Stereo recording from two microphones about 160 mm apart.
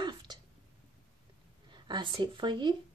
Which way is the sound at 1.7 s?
30° right (ahead or behind).